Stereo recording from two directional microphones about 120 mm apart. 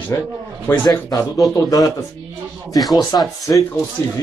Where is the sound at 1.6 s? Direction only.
30° left (ahead or behind).